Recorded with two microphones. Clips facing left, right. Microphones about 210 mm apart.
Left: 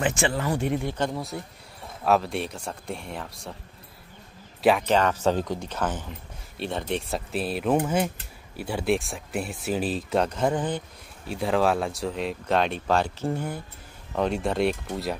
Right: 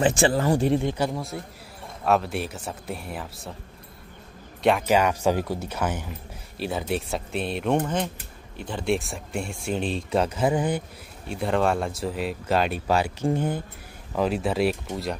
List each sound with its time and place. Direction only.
0.0 s speech: 35° right (ahead or behind)
0.8 s speech: 10° right (ahead or behind)
4.8 s speech: 10° right (ahead or behind)
11.2 s speech: centre (ahead or behind); by 13.6 s 20° right (ahead or behind)
14.1 s speech: centre (ahead or behind)